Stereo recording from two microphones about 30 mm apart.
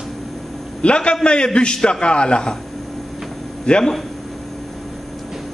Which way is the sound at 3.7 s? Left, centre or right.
Left.